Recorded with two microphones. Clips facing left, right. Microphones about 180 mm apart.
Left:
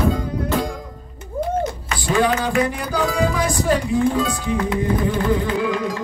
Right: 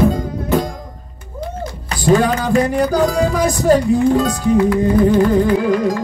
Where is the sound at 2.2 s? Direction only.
45° right (ahead or behind).